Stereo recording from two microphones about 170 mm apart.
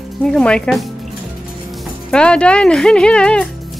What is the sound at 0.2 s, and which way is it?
Speech, 5° left (ahead or behind).